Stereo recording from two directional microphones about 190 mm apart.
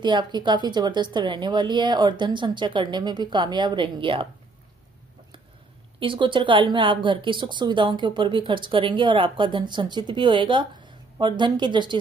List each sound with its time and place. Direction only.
0.0 s speech: 25° right (ahead or behind)
5.9 s speech: 25° right (ahead or behind)